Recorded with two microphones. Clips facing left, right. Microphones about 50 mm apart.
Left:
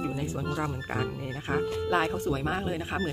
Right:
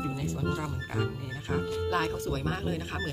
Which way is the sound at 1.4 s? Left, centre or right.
Left.